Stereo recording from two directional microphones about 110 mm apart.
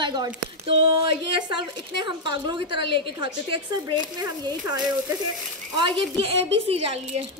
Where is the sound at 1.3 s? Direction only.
40° right (ahead or behind).